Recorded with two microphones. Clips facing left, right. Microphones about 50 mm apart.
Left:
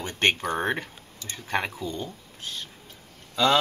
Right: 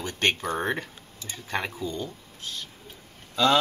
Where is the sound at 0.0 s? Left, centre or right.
Left.